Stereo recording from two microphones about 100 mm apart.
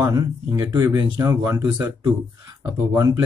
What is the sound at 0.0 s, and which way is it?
Speech, 35° right (ahead or behind).